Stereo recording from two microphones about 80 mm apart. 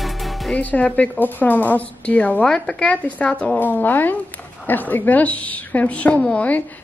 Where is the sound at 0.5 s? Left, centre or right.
Centre.